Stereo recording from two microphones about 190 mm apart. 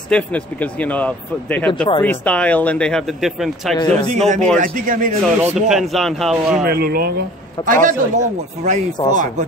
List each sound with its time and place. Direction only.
0.1 s speech: 5° left (ahead or behind)
3.7 s a man's voice: 25° left (ahead or behind)
4.1 s speech: 35° right (ahead or behind)
5.7 s speech: centre (ahead or behind)
6.6 s speech: 55° right (ahead or behind)